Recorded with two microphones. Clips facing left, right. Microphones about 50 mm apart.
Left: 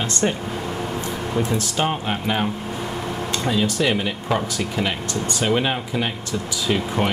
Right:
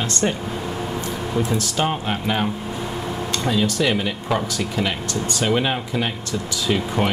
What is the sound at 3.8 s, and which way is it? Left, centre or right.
Speech, centre.